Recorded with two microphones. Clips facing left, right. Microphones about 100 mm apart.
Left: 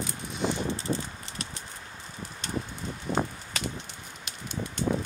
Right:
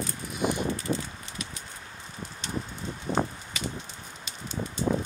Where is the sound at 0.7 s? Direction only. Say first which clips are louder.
Right 1 dB; 30° left (ahead or behind).